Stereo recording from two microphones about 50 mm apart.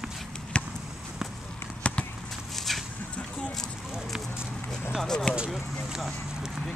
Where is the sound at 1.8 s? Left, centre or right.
Left.